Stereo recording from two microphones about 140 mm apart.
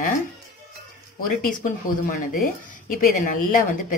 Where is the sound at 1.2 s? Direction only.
75° left (ahead or behind).